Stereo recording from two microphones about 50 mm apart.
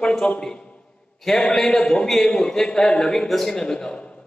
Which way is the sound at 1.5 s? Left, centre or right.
Centre.